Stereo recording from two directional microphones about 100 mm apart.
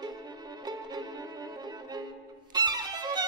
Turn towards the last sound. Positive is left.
turn(degrees=-45)  # may be behind; listen again after turning